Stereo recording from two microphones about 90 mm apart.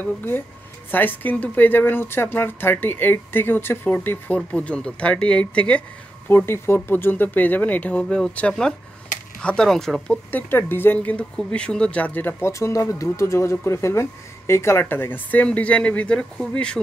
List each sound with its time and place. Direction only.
0.0 s speech: 25° left (ahead or behind)
6.2 s speech: 25° left (ahead or behind); by 10.1 s 5° left (ahead or behind)
10.3 s speech: 25° left (ahead or behind)